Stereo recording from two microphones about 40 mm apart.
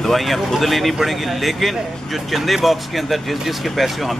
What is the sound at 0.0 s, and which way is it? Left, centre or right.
Speech, centre.